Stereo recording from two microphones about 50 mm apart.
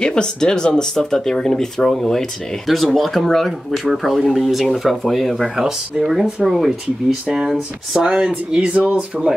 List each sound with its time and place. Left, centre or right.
0.0 s speech: centre
8.5 s speech: right